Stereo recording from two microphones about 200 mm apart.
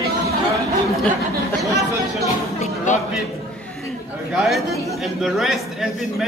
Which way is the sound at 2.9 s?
35° left (ahead or behind).